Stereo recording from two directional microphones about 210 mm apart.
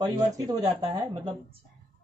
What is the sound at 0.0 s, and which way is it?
Speech, 20° right (ahead or behind).